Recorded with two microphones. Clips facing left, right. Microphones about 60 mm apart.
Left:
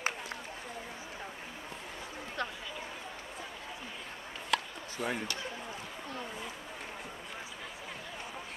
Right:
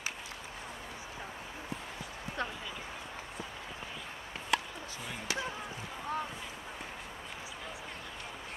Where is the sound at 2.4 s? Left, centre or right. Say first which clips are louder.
Even; right.